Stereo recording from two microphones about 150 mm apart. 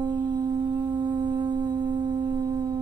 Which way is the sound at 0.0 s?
30° right (ahead or behind).